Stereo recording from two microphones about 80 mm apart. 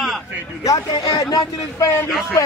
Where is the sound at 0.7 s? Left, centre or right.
Left.